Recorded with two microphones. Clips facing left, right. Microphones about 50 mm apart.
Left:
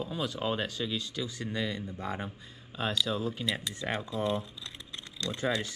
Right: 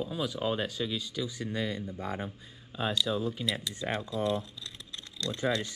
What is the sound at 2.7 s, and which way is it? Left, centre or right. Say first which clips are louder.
Speech: right 1 dB; centre.